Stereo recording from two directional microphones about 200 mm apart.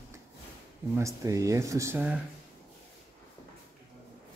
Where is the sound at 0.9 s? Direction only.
15° right (ahead or behind).